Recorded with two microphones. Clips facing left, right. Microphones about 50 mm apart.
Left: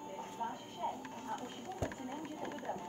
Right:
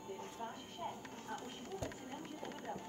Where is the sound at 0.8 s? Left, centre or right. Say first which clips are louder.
Left 5 dB; centre.